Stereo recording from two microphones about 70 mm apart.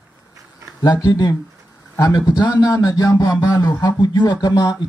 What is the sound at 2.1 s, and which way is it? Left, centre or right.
Speech, left.